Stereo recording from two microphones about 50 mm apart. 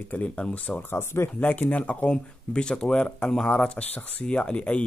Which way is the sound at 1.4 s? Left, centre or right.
Left.